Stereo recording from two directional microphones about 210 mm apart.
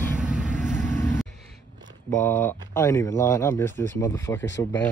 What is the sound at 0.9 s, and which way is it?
Vehicle, 35° right (ahead or behind).